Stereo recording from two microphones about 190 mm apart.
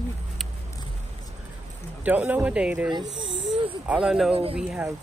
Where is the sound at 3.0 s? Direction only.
75° right (ahead or behind).